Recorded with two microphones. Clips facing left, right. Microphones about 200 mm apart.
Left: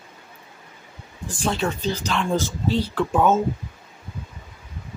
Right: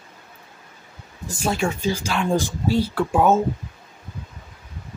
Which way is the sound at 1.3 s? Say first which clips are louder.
Right 1 dB; 10° right (ahead or behind).